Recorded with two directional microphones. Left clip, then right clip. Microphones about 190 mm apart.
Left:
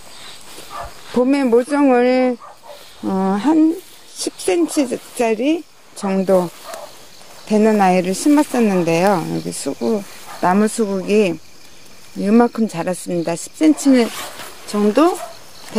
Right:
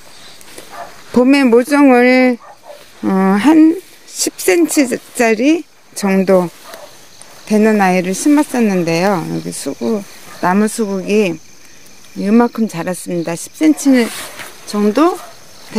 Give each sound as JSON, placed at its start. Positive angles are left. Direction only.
{"t": 1.1, "sound": "speech", "side_deg": -30}
{"t": 4.1, "sound": "speech", "side_deg": -20}
{"t": 7.4, "sound": "speech", "side_deg": -10}